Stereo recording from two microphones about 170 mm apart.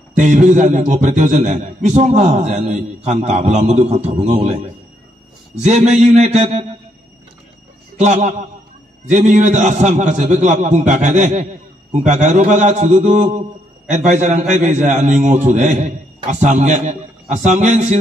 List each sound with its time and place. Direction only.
0.2 s a man's voice: 45° right (ahead or behind)
8.0 s a man's voice: 40° right (ahead or behind)